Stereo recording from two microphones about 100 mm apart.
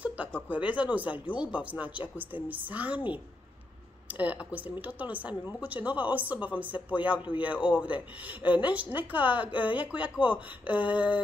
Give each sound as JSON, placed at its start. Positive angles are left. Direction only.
{"t": 0.5, "sound": "speech", "side_deg": -15}
{"t": 4.1, "sound": "speech", "side_deg": -15}
{"t": 7.2, "sound": "a man's voice", "side_deg": 55}
{"t": 7.6, "sound": "speech", "side_deg": -15}